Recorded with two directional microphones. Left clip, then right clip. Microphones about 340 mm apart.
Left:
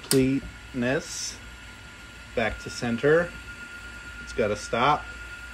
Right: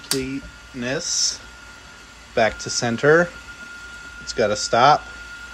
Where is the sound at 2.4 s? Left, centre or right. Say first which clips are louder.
Right 8 dB; centre.